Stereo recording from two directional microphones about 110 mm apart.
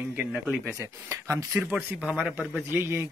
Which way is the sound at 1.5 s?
10° right (ahead or behind).